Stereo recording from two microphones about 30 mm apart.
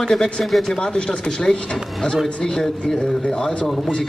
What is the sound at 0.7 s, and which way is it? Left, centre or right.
Speech, left.